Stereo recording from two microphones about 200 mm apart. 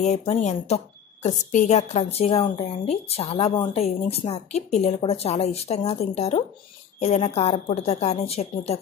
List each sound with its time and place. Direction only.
0.0 s speech: 35° left (ahead or behind)